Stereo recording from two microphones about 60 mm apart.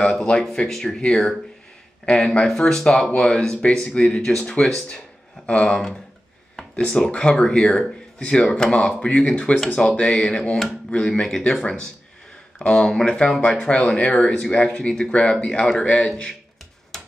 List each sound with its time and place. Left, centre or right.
0.1 s speech: centre
6.8 s speech: centre